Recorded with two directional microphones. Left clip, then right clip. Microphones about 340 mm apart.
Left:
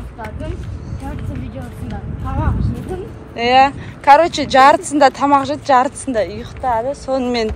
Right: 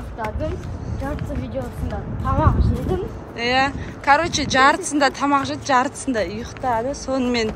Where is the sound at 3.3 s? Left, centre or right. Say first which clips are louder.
Left 8 dB; centre.